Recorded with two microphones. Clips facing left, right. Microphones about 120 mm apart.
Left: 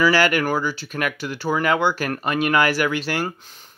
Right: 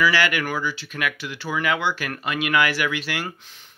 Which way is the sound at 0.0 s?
40° left (ahead or behind).